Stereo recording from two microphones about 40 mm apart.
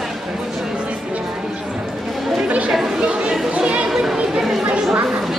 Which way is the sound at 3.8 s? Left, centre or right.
Centre.